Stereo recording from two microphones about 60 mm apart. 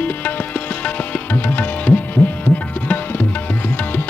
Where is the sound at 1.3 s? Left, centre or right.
Left.